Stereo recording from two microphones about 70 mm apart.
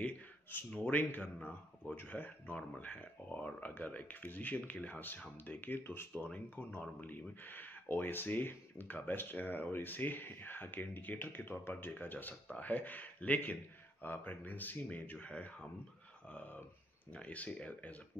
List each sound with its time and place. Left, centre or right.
0.0 s a sound: left
1.1 s speech: left
17.1 s speech: centre